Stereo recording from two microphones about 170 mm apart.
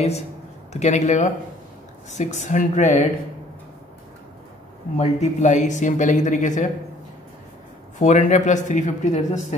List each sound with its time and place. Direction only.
0.7 s speech: 40° left (ahead or behind)
4.9 s speech: 40° left (ahead or behind)
8.0 s speech: 45° left (ahead or behind)